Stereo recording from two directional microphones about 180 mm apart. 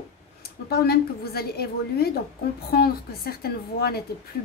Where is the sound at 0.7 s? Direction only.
60° left (ahead or behind).